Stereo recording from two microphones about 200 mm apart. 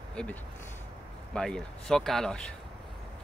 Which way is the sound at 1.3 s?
5° left (ahead or behind).